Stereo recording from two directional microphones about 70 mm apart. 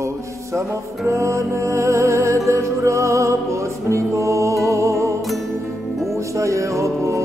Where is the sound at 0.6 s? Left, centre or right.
Right.